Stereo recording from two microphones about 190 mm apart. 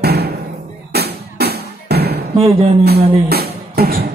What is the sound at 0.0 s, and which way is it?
Music, 55° right (ahead or behind).